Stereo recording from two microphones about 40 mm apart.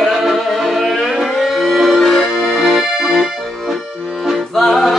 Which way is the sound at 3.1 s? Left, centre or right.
Centre.